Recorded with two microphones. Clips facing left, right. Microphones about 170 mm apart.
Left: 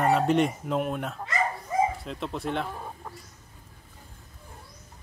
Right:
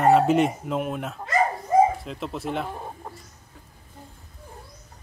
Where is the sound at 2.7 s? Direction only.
25° right (ahead or behind).